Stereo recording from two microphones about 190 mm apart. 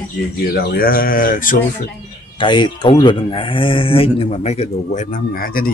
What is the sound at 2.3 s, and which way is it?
Speech, 25° left (ahead or behind).